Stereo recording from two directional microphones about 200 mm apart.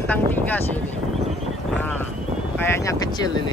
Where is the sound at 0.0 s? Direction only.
10° left (ahead or behind).